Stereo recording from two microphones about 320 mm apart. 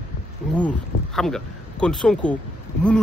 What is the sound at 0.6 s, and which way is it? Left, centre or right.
Speech, centre.